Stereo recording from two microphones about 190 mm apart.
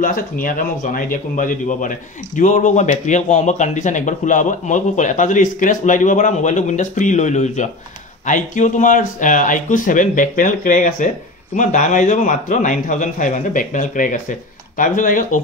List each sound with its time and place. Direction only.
0.0 s speech: 45° left (ahead or behind)